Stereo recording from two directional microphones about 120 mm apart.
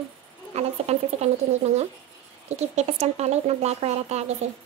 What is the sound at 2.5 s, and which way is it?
Speech, 65° right (ahead or behind).